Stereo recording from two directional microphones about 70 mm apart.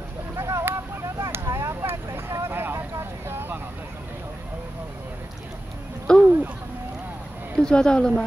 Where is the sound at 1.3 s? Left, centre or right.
Right.